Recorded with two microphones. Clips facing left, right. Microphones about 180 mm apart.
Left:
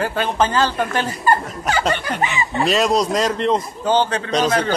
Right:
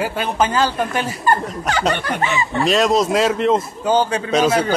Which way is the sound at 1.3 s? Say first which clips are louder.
Even; 5° left (ahead or behind).